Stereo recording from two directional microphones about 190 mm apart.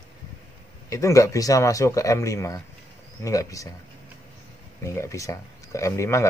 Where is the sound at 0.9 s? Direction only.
15° left (ahead or behind).